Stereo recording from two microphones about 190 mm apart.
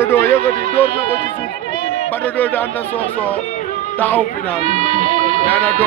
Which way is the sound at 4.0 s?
10° left (ahead or behind).